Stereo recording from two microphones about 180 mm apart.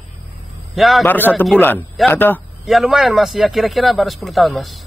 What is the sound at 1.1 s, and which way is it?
A man's voice, 10° left (ahead or behind).